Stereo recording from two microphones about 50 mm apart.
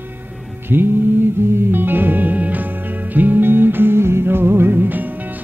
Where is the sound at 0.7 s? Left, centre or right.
Right.